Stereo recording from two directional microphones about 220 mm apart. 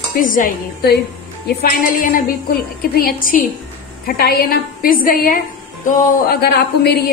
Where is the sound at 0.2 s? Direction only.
40° left (ahead or behind).